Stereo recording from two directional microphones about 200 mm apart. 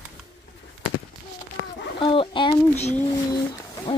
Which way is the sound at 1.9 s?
25° left (ahead or behind).